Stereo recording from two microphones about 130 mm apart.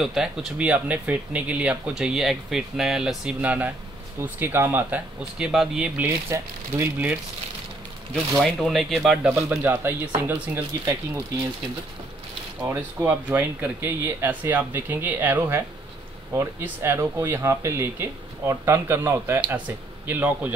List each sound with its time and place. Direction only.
0.0 s speech: 5° right (ahead or behind)
5.9 s speech: 15° right (ahead or behind)
8.4 s speech: centre (ahead or behind)
9.3 s speech: 15° right (ahead or behind)
12.6 s speech: 15° right (ahead or behind)